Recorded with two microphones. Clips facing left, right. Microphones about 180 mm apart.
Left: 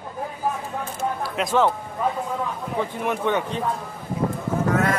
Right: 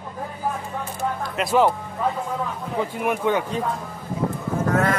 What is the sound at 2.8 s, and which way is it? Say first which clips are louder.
Speech: right 2 dB; 10° right (ahead or behind).